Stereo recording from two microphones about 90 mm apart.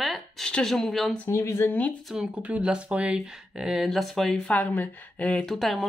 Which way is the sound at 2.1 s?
10° right (ahead or behind).